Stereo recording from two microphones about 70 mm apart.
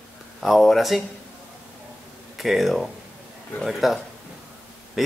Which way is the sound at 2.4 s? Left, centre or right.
Centre.